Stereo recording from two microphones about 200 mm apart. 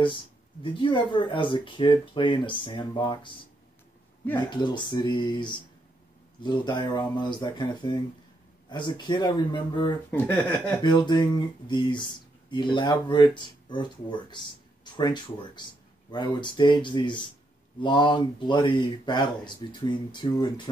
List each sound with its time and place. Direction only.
0.0 s speech: 25° left (ahead or behind)
4.5 s speech: 20° left (ahead or behind)
10.1 s speech: 10° left (ahead or behind)
10.8 s speech: 20° left (ahead or behind)
15.0 s speech: 20° left (ahead or behind)